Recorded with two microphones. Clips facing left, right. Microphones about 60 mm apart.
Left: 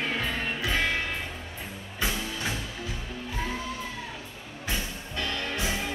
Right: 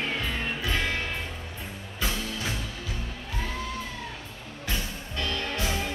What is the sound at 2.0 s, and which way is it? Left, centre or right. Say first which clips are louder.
Music: left 1 dB; centre.